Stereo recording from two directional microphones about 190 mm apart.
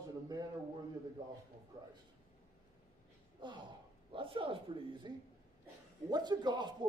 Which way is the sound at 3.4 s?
25° right (ahead or behind).